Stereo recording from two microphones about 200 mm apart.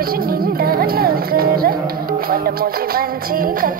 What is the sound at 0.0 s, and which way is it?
Speech, 50° right (ahead or behind).